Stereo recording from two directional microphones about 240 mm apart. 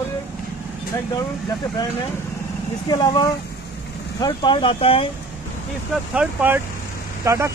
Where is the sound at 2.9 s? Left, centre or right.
Centre.